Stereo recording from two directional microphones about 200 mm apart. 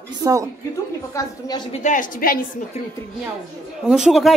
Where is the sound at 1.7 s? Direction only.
40° left (ahead or behind).